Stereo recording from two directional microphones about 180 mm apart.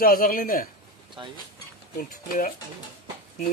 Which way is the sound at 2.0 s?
50° left (ahead or behind).